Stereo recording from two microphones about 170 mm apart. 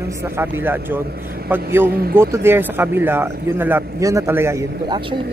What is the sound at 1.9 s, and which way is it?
Speech, 65° right (ahead or behind).